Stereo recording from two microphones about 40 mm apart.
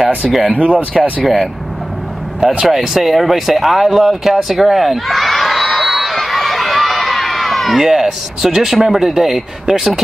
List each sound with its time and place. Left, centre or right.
0.5 s speech: right
1.2 s speech: centre
2.6 s speech: centre